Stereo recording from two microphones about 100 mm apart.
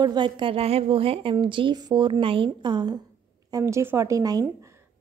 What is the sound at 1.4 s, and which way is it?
Speech, 55° right (ahead or behind).